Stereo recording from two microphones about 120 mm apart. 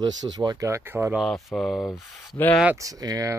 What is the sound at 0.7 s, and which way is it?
Speech, 20° right (ahead or behind).